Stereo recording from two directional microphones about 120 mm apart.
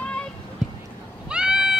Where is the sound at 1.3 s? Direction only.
5° right (ahead or behind).